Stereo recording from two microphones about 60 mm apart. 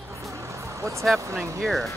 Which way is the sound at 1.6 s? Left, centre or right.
Centre.